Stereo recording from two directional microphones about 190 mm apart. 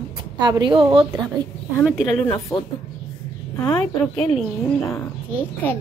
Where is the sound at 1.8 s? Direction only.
Centre (ahead or behind).